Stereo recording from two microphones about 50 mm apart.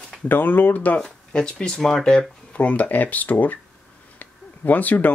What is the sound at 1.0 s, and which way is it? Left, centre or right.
Speech, centre.